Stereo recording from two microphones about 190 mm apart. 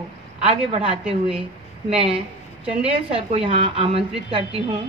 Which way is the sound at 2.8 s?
30° right (ahead or behind).